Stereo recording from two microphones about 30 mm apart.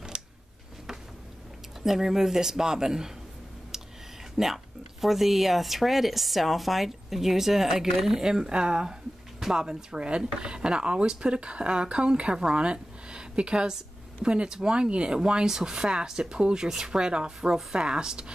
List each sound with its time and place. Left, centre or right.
0.1 s a sound: right
1.8 s speech: centre
4.4 s speech: centre
8.5 s speech: right
9.9 s speech: right
15.4 s speech: centre
16.6 s speech: centre
16.9 s speech: right